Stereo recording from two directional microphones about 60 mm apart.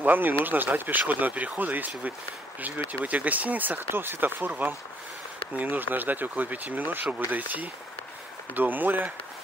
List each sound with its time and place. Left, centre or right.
0.0 s speech: right